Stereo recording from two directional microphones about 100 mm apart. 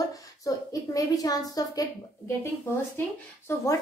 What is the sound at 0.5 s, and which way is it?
A woman's voice, 35° left (ahead or behind).